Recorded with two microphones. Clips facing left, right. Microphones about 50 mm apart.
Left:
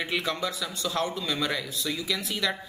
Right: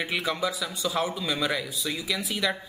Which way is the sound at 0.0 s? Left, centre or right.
Centre.